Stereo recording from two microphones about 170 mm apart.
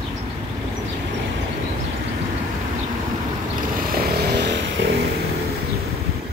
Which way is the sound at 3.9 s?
70° right (ahead or behind).